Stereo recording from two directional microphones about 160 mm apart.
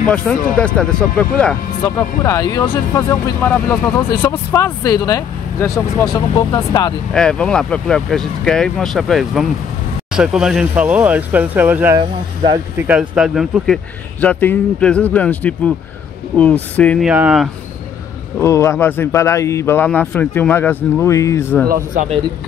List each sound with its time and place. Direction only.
0.0 s speech: 5° left (ahead or behind)
2.0 s a man's voice: 20° left (ahead or behind)
7.1 s speech: 5° left (ahead or behind)
14.2 s a man's voice: 10° left (ahead or behind)
16.7 s a man's voice: 10° left (ahead or behind)
17.0 s speech: 5° right (ahead or behind)
18.4 s a man's voice: 15° left (ahead or behind)
21.6 s speech: 65° right (ahead or behind)